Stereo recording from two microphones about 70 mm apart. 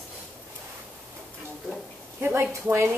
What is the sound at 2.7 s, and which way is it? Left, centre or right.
Speech, right.